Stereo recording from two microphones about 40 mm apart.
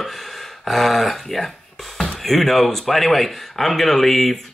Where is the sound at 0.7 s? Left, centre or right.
Centre.